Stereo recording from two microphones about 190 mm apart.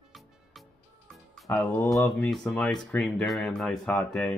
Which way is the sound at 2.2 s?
Centre (ahead or behind).